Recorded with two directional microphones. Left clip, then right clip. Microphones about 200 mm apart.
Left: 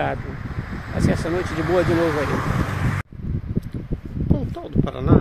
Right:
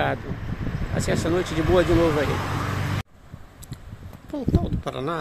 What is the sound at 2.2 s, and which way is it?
Speech, 50° right (ahead or behind).